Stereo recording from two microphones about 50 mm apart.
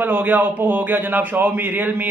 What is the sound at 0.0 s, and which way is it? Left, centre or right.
A man's voice, right.